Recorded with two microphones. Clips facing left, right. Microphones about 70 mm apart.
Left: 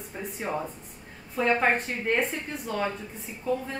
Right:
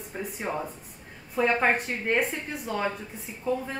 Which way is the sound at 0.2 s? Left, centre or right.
Centre.